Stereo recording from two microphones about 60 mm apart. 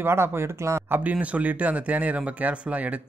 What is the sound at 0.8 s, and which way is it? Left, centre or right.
Speech, right.